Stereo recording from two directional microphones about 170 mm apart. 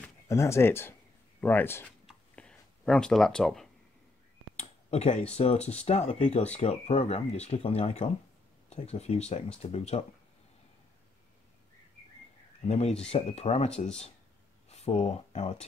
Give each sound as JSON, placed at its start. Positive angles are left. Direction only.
{"t": 0.3, "sound": "speech", "side_deg": 15}
{"t": 2.0, "sound": "a sound", "side_deg": 5}
{"t": 4.6, "sound": "a sound", "side_deg": 40}
{"t": 5.3, "sound": "speech", "side_deg": 40}
{"t": 12.6, "sound": "speech", "side_deg": 40}
{"t": 14.7, "sound": "speech", "side_deg": 35}